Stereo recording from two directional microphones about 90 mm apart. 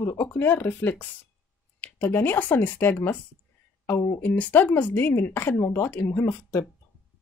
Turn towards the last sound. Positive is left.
turn(degrees=20)  # may be behind; listen again after turning